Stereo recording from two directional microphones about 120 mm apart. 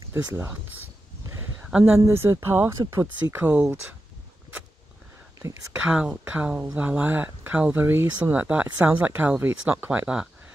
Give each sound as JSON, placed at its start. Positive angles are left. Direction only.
{"t": 0.1, "sound": "speech", "side_deg": -20}
{"t": 1.2, "sound": "a sound", "side_deg": -20}
{"t": 2.0, "sound": "speech", "side_deg": -25}
{"t": 3.3, "sound": "speech", "side_deg": -10}
{"t": 5.9, "sound": "speech", "side_deg": -10}